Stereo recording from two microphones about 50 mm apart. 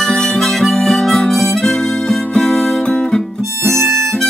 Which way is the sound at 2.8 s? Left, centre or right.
Left.